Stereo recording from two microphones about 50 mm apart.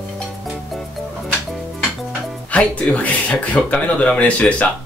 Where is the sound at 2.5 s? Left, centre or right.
Left.